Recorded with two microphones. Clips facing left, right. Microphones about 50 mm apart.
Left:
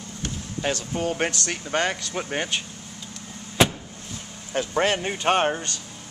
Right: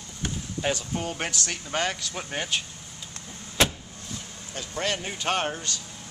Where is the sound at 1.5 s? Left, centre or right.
Centre.